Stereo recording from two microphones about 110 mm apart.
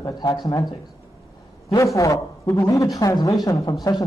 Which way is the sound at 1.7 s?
30° left (ahead or behind).